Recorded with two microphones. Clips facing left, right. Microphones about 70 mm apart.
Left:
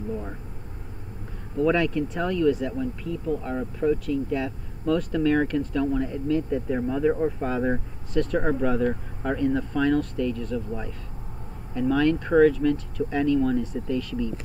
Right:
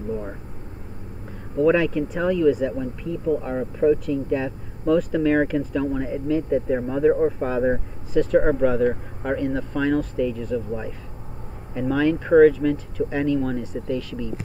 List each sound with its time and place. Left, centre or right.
1.6 s speech: centre
11.9 s speech: centre